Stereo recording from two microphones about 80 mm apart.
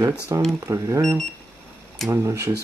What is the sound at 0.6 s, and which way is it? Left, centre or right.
Speech, right.